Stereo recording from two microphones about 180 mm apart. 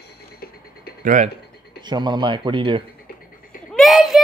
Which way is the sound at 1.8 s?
25° right (ahead or behind).